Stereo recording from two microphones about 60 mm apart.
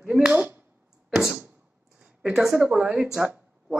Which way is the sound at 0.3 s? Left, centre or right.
Right.